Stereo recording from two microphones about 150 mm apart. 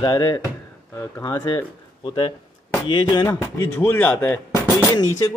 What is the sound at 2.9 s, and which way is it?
A man's voice, 30° left (ahead or behind).